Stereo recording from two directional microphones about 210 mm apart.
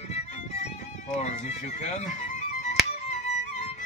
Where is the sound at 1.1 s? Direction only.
30° left (ahead or behind).